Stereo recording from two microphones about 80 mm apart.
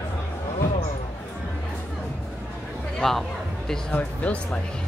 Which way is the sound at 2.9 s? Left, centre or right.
Centre.